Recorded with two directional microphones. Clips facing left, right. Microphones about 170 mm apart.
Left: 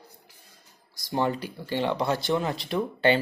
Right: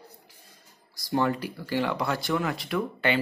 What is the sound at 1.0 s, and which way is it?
Speech, 25° left (ahead or behind).